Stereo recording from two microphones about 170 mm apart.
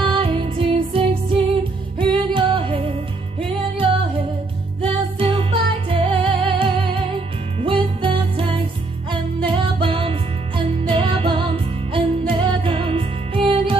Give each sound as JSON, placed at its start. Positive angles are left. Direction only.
{"t": 0.0, "sound": "music", "side_deg": -30}
{"t": 5.2, "sound": "music", "side_deg": -30}
{"t": 9.8, "sound": "music", "side_deg": -30}